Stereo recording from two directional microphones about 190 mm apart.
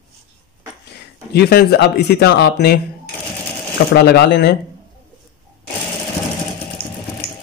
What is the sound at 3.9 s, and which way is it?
Speech, 55° left (ahead or behind).